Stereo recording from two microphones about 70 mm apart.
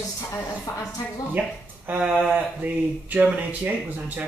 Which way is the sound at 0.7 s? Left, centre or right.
Left.